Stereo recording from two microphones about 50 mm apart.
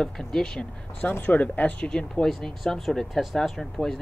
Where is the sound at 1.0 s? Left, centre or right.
Left.